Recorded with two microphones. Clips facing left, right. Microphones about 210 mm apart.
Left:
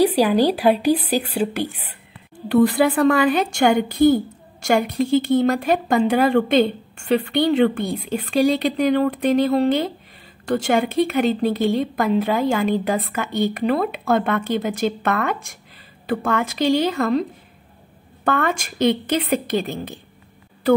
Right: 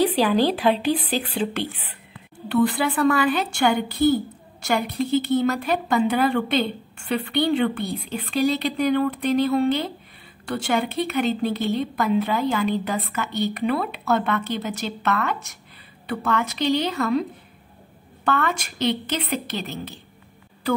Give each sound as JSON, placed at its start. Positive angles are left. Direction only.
{"t": 0.3, "sound": "speech", "side_deg": 10}
{"t": 1.6, "sound": "a woman's voice", "side_deg": 40}
{"t": 18.2, "sound": "a woman's voice", "side_deg": 50}